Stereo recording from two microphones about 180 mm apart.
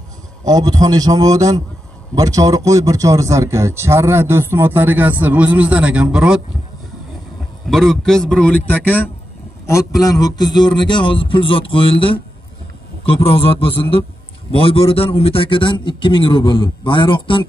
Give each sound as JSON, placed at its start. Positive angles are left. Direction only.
{"t": 0.5, "sound": "a man's voice", "side_deg": -20}
{"t": 7.7, "sound": "a man's voice", "side_deg": 0}